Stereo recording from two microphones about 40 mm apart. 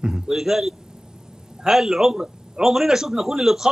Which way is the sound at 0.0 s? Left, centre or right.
Centre.